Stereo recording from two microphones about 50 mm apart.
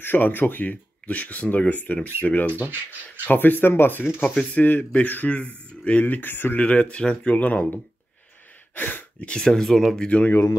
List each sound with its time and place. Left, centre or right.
0.0 s speech: left
2.5 s speech: right
3.3 s speech: left
4.3 s speech: left
6.0 s speech: left
6.6 s speech: left
8.7 s speech: left
9.4 s speech: centre
9.9 s speech: left